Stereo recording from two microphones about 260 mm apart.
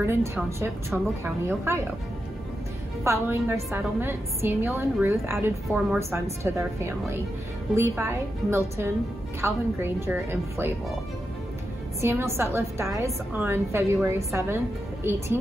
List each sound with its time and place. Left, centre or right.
0.0 s a woman's voice: centre
3.0 s a woman's voice: centre
12.0 s a woman's voice: centre